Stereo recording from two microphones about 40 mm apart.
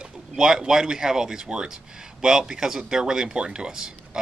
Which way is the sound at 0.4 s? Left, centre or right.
Centre.